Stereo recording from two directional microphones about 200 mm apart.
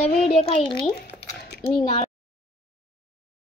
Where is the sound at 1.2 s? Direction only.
55° left (ahead or behind).